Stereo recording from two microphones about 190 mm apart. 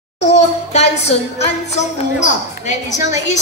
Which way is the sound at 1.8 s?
40° left (ahead or behind).